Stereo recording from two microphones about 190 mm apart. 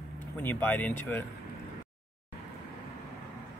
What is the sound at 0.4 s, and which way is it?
Speech, 10° left (ahead or behind).